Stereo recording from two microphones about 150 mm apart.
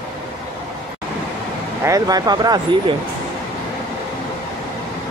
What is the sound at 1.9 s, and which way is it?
Speech, 25° right (ahead or behind).